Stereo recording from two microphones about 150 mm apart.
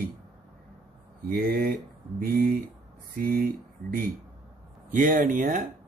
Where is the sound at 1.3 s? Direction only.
80° right.